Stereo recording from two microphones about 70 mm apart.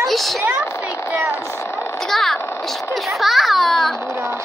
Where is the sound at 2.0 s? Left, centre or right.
Centre.